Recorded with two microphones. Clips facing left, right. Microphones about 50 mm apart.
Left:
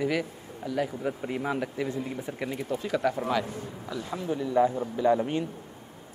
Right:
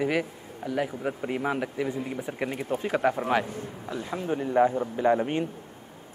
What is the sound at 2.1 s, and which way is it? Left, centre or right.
Speech, right.